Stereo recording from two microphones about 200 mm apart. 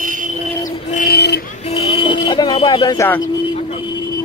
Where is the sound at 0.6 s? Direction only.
45° left (ahead or behind).